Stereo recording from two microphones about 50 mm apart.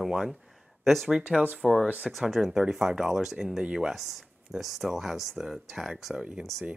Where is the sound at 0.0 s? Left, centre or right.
Centre.